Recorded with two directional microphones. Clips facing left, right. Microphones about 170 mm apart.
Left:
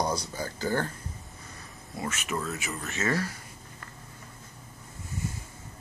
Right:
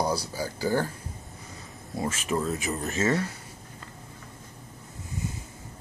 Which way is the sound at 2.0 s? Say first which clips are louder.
Right 4 dB; 25° right (ahead or behind).